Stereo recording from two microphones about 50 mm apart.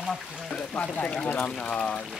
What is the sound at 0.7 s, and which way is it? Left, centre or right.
Speech, left.